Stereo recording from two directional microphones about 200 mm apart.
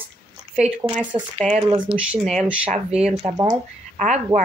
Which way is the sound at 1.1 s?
25° right (ahead or behind).